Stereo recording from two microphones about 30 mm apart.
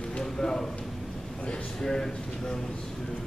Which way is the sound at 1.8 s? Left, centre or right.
Centre.